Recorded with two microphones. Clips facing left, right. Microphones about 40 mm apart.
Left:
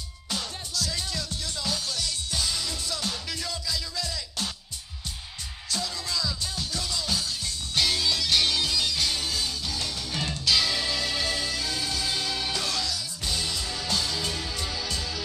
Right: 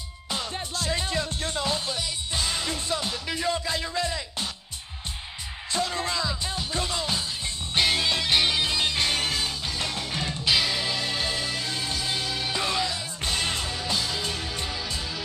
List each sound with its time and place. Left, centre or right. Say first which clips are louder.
0.3 s music: right 3 dB; right
5.7 s music: right 5 dB; right
10.4 s music: right 1 dB; right
12.5 s music: right 3 dB; right
13.2 s music: right 4 dB; right